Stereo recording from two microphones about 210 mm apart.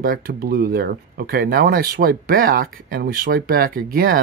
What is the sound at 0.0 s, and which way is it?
Speech, 45° right (ahead or behind).